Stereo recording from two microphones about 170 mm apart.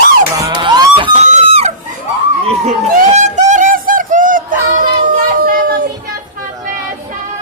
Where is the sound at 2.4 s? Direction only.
40° right (ahead or behind).